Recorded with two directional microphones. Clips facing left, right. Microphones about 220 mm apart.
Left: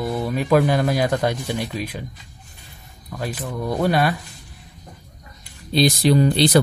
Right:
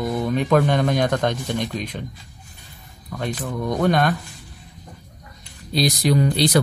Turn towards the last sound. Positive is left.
turn(degrees=30)  # may be behind; listen again after turning